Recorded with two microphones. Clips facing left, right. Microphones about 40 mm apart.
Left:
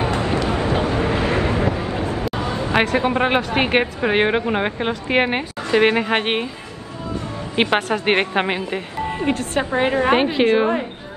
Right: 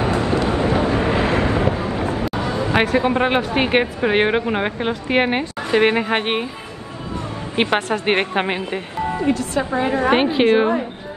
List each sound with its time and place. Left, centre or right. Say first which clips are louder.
0.1 s vehicle: right 2 dB; left
0.4 s vehicle: right 2 dB; right
0.8 s boat: right 2 dB; right
2.7 s a woman's voice: right 1 dB; centre
7.7 s a woman's voice: even; centre
9.1 s a woman's voice: right 1 dB; left
10.4 s a woman's voice: right 3 dB; centre